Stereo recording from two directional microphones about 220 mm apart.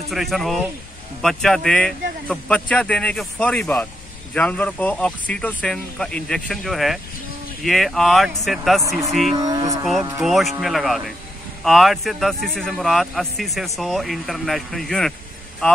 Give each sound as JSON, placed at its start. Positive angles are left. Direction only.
{"t": 0.1, "sound": "speech", "side_deg": 0}
{"t": 9.3, "sound": "a sound", "side_deg": -15}
{"t": 10.2, "sound": "speech", "side_deg": 0}